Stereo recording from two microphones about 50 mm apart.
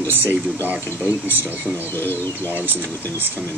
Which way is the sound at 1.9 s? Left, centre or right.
Left.